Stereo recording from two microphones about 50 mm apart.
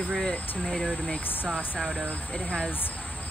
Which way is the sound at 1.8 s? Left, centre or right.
Centre.